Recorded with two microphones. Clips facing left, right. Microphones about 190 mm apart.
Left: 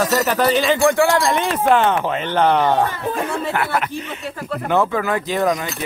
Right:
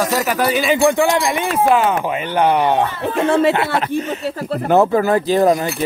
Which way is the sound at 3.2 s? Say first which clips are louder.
Right 10 dB; 80° right.